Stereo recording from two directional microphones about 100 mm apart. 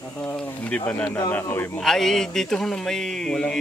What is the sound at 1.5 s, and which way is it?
Speech, 20° left (ahead or behind).